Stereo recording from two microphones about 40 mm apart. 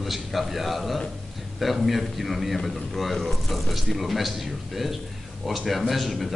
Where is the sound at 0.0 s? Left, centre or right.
Centre.